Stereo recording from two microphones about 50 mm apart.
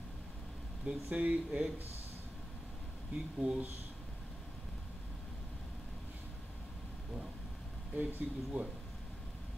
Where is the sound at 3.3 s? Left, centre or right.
Centre.